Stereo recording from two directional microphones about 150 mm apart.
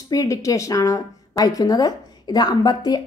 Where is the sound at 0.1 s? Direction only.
20° left (ahead or behind).